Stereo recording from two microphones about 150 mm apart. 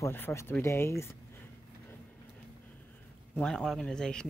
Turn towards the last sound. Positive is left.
turn(degrees=5)  # may be behind; listen again after turning